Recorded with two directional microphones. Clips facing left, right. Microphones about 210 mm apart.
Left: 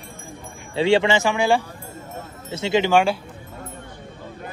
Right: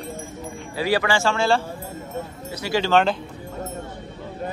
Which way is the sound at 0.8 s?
25° left (ahead or behind).